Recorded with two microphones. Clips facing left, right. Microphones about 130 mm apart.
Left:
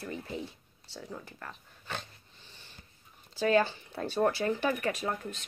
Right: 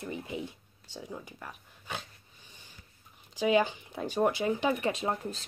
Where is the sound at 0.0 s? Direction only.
15° right (ahead or behind).